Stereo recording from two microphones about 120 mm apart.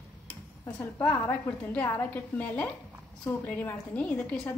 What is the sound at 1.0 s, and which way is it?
A woman's voice, 15° left (ahead or behind).